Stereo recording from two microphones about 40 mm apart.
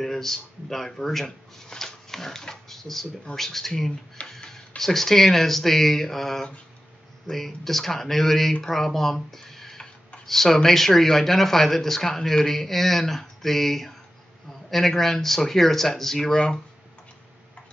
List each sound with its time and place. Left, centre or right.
0.0 s speech: centre
1.7 s dog: centre
2.7 s a sound: centre
3.3 s speech: centre
16.3 s speech: left